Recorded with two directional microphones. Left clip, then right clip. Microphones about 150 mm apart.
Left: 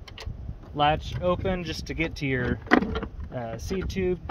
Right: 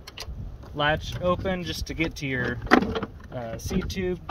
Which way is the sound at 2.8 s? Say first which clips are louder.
Right 3 dB; 30° right (ahead or behind).